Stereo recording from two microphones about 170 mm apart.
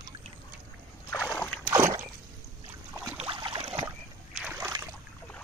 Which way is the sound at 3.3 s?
30° right (ahead or behind).